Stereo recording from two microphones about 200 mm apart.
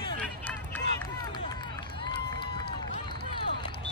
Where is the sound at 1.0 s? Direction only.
20° left (ahead or behind).